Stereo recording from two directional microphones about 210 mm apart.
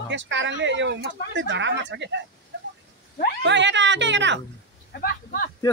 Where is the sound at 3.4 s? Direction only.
60° right (ahead or behind).